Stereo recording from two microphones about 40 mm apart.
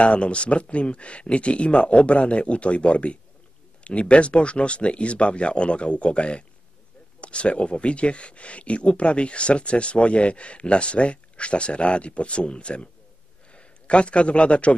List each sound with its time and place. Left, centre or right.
0.0 s a man's voice: left